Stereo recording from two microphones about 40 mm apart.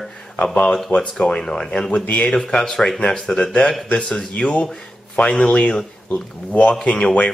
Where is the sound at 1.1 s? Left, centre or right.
Centre.